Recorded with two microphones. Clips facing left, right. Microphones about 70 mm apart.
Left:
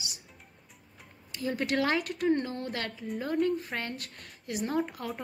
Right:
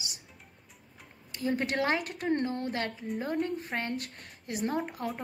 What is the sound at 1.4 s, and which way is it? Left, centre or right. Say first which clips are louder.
Speech: even; right.